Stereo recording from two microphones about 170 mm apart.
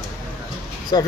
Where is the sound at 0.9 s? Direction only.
25° left (ahead or behind).